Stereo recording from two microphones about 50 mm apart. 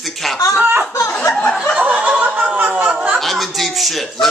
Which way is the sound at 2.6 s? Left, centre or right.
Right.